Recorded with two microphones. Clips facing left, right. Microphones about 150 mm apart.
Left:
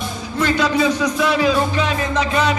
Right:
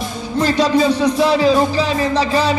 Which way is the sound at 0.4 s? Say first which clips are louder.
Right 3 dB; 35° right (ahead or behind).